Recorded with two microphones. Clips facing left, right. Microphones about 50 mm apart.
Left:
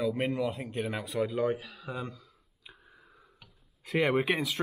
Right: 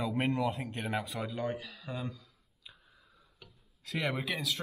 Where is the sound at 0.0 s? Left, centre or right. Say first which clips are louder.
Left 2 dB; centre.